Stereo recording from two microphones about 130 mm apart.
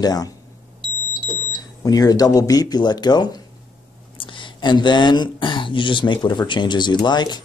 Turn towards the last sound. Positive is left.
turn(degrees=35)  # may be behind; listen again after turning